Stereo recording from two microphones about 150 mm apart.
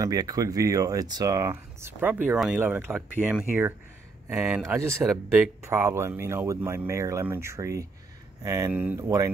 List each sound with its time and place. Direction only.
0.0 s speech: 25° right (ahead or behind)